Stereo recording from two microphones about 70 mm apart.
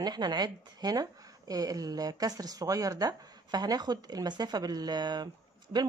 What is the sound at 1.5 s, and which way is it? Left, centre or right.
Speech, right.